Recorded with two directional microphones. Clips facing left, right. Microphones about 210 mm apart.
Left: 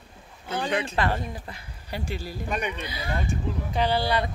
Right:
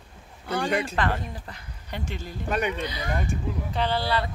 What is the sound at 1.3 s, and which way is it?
Speech, 10° left (ahead or behind).